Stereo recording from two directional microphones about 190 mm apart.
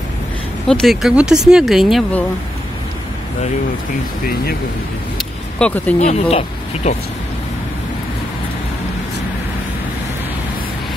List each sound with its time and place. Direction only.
0.7 s speech: centre (ahead or behind)
5.6 s speech: 10° left (ahead or behind)
5.9 s speech: 35° left (ahead or behind)